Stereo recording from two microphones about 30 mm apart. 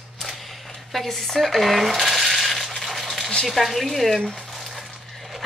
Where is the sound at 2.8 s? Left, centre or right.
Centre.